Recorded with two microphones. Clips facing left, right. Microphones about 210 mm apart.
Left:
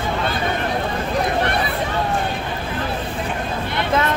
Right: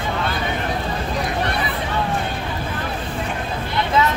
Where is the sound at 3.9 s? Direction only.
50° left (ahead or behind).